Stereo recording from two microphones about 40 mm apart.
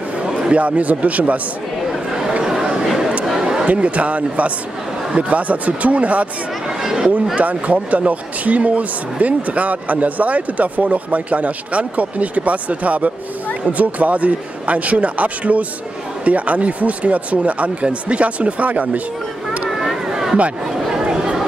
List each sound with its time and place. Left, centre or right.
0.5 s speech: right
2.4 s chatter: centre
3.6 s speech: right
6.8 s a sound: centre
7.3 s speech: right
19.7 s a sound: centre